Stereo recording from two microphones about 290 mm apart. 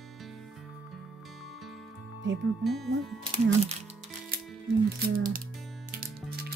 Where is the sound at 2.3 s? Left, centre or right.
Right.